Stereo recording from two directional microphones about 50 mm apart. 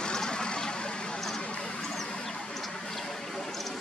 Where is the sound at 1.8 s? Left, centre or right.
Centre.